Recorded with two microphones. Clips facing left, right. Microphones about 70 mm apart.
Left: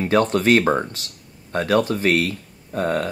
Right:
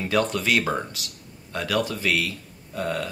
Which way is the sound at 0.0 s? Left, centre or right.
Left.